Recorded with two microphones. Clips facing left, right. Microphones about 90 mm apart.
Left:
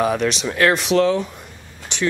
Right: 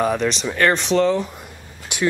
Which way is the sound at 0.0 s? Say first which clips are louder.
Left 1 dB; 5° left (ahead or behind).